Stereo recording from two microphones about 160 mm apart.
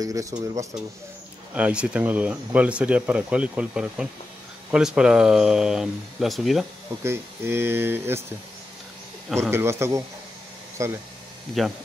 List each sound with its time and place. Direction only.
0.0 s speech: 20° right (ahead or behind)
1.5 s speech: 5° right (ahead or behind)
7.0 s speech: 15° right (ahead or behind)
9.4 s speech: 15° right (ahead or behind)